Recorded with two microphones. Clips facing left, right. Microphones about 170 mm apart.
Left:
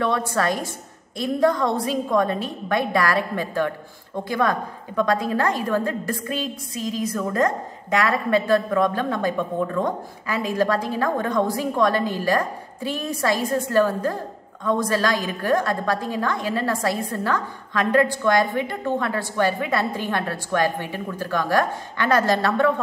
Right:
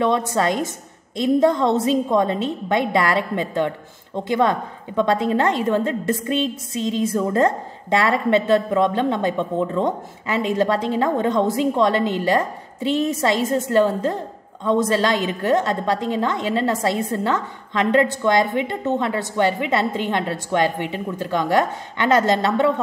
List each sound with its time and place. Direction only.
0.0 s a woman's voice: 20° right (ahead or behind)